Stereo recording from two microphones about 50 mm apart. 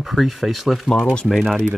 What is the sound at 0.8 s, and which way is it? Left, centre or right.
Speech, centre.